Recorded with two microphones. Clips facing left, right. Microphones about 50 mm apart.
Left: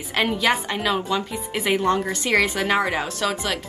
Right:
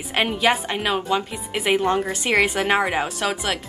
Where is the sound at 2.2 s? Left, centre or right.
Right.